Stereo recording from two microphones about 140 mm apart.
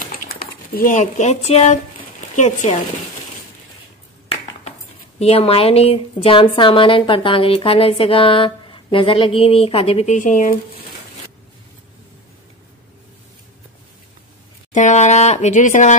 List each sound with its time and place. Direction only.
0.3 s speech: 90° left; by 2.7 s 60° left (ahead or behind)
5.2 s a woman's voice: 45° left (ahead or behind)
10.1 s speech: 65° left (ahead or behind)
14.7 s speech: 60° left (ahead or behind)